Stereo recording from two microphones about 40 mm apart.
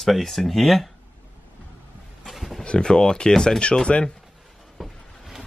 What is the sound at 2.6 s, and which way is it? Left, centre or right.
Speech, left.